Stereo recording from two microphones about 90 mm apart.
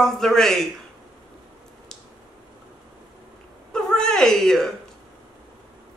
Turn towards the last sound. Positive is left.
turn(degrees=5)  # may be behind; listen again after turning